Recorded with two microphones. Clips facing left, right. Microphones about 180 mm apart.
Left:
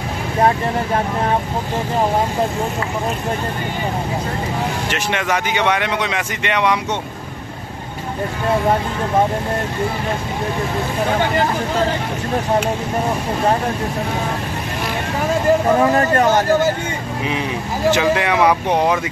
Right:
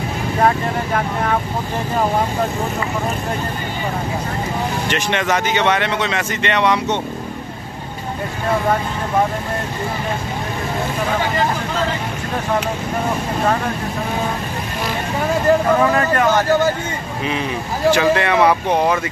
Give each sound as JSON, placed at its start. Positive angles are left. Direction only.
{"t": 4.8, "sound": "speech", "side_deg": 5}
{"t": 15.8, "sound": "speech", "side_deg": 35}
{"t": 18.0, "sound": "speech", "side_deg": 15}